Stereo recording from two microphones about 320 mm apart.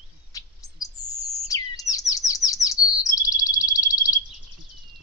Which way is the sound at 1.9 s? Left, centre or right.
Centre.